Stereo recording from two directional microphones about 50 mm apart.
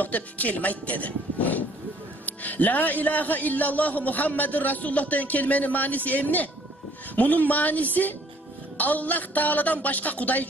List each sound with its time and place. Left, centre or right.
0.0 s a man's voice: left